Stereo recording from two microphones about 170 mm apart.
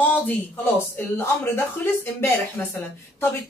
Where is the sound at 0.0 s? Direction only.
10° left (ahead or behind).